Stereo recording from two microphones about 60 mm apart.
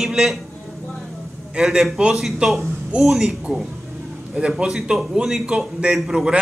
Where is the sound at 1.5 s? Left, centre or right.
Centre.